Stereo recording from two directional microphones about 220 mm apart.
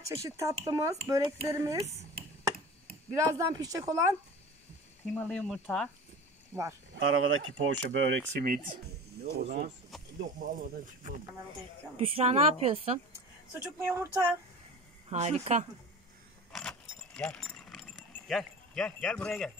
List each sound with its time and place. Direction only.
0.0 s speech: 15° right (ahead or behind)
3.2 s speech: 15° right (ahead or behind)
5.0 s speech: 10° left (ahead or behind)
7.1 s speech: 60° right (ahead or behind)
8.4 s a woman's voice: 40° right (ahead or behind)
13.6 s speech: 10° right (ahead or behind)
15.0 s a woman's voice: 30° right (ahead or behind)
16.5 s keys jangling: 5° left (ahead or behind)
18.3 s speech: centre (ahead or behind)